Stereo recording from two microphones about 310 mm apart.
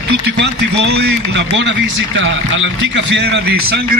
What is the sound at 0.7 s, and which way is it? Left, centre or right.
A man's voice, right.